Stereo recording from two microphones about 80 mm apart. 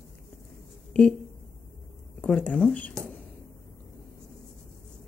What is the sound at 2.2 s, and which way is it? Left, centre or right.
Speech, centre.